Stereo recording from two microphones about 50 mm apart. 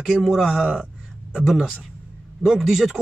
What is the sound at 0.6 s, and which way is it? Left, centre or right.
Speech, centre.